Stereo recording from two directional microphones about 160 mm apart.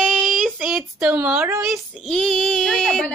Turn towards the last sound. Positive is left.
turn(degrees=5)  # may be behind; listen again after turning